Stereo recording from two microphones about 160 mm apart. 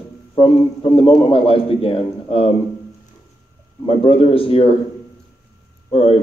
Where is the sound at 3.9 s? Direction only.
35° left (ahead or behind).